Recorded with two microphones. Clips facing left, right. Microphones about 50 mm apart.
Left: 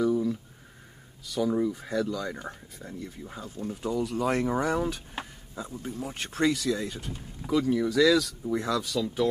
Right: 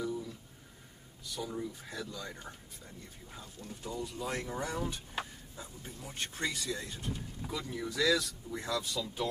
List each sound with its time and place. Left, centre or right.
0.0 s a sound: left
1.2 s speech: left
2.4 s speech: left
5.6 s speech: left
9.0 s speech: left